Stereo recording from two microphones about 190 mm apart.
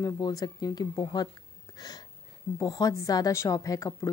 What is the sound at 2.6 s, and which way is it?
A woman's voice, 20° left (ahead or behind).